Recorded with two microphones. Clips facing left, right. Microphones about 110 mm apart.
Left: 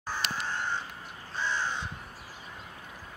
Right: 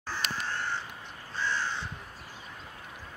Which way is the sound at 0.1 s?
15° left (ahead or behind).